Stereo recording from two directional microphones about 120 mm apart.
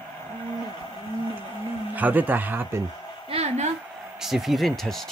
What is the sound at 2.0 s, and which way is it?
Speech, 15° right (ahead or behind).